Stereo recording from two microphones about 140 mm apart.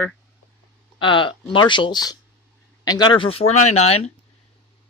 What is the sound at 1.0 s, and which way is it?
Speech, 35° left (ahead or behind).